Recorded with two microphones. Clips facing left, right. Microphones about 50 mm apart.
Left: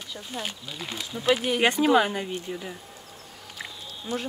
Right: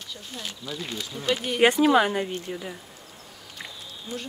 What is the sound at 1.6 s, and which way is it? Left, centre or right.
Speech, centre.